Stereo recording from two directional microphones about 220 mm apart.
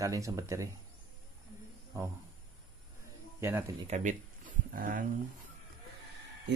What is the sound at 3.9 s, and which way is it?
Speech, 35° right (ahead or behind).